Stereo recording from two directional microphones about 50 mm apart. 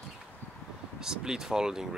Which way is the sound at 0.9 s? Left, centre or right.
Centre.